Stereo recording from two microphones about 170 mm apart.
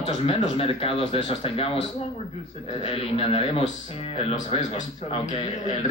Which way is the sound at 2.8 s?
35° left (ahead or behind).